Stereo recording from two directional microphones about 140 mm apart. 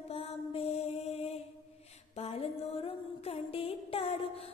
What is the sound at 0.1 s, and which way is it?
Mantra, 45° left (ahead or behind).